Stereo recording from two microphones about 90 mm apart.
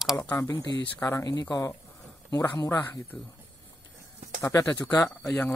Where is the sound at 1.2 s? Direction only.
45° left (ahead or behind).